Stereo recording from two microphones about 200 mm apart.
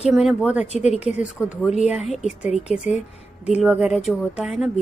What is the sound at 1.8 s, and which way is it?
A woman's voice, 5° right (ahead or behind).